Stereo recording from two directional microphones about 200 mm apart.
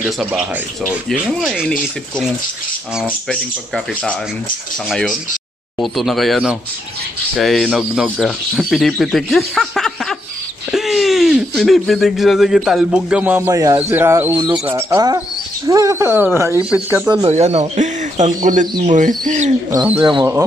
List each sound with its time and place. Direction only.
0.0 s speech: 5° right (ahead or behind)
3.1 s speech: 5° left (ahead or behind)
17.3 s speech: 35° right (ahead or behind)
20.0 s speech: 25° right (ahead or behind)